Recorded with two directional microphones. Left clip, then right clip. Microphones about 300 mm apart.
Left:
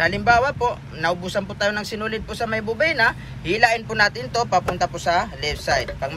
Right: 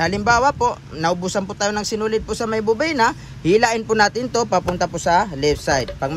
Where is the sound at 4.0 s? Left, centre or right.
Right.